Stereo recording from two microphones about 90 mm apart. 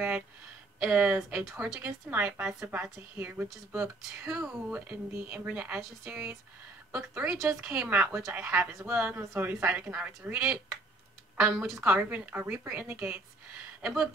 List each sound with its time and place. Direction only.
0.7 s a woman's voice: 15° right (ahead or behind)
3.8 s a woman's voice: 10° right (ahead or behind)
11.8 s speech: 15° right (ahead or behind)